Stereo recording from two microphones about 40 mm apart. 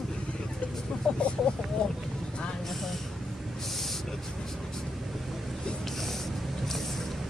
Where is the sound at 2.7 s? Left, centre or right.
Centre.